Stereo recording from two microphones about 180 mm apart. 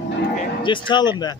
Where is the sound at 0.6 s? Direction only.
25° left (ahead or behind).